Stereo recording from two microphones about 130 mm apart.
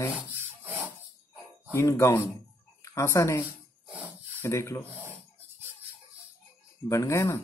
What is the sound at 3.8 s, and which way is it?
Rub, 5° right (ahead or behind).